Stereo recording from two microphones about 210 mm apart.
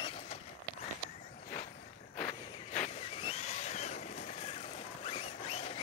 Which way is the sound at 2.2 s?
30° left (ahead or behind).